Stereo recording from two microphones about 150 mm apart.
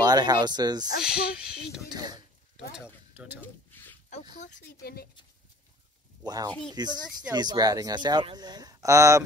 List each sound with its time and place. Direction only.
0.0 s speech: 25° right (ahead or behind)
1.0 s speech: 5° right (ahead or behind)
2.0 s speech: 25° right (ahead or behind)
4.1 s speech: 55° left (ahead or behind)
4.8 s speech: 90° left
6.2 s speech: 25° right (ahead or behind)